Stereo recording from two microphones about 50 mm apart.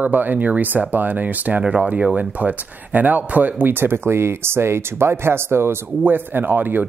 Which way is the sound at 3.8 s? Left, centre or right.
Right.